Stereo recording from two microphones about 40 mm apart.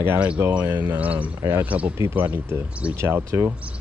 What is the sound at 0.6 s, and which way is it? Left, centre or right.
Speech, right.